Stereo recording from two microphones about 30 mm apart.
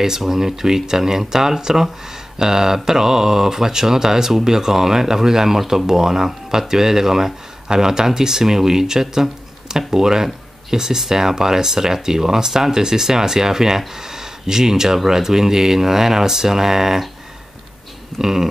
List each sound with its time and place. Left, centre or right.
0.3 s speech: centre
18.2 s speech: centre